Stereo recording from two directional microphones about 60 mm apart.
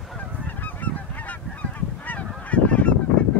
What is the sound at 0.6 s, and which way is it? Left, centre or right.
Goose, left.